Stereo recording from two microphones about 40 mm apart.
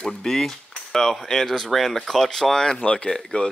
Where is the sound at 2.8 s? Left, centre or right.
Left.